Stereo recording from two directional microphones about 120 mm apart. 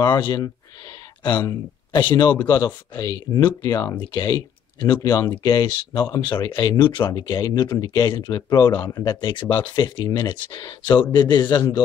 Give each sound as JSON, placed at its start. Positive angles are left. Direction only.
{"t": 0.0, "sound": "speech", "side_deg": 35}